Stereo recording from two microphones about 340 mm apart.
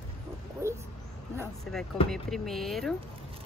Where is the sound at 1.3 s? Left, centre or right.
Centre.